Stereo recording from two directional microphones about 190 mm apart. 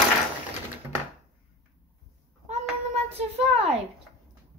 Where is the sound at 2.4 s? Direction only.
35° right (ahead or behind).